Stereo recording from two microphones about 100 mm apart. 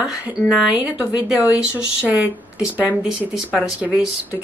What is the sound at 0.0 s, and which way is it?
Speech, 10° right (ahead or behind).